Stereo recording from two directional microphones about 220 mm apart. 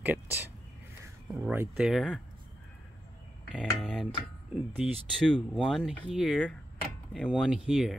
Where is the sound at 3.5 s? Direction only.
Centre (ahead or behind).